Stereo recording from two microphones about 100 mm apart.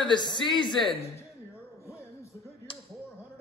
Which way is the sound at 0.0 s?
50° left (ahead or behind).